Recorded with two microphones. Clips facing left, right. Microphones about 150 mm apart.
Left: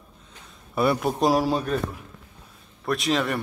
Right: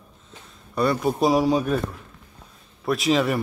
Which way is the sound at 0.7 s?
5° left (ahead or behind).